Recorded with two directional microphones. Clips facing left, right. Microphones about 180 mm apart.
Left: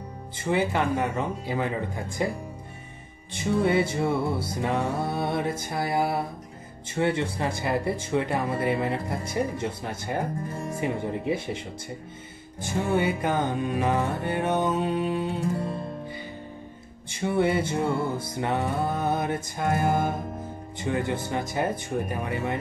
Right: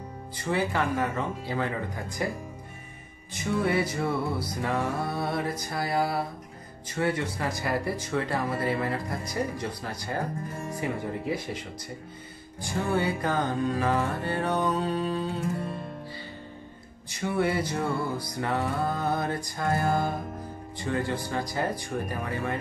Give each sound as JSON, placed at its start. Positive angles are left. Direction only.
{"t": 0.4, "sound": "speech", "side_deg": 20}
{"t": 12.6, "sound": "speech", "side_deg": 20}
{"t": 17.1, "sound": "speech", "side_deg": 25}